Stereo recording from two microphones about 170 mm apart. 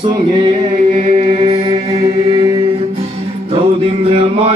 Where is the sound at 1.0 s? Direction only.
40° right (ahead or behind).